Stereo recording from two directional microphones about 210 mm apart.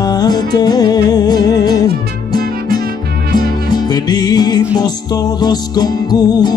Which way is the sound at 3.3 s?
20° left (ahead or behind).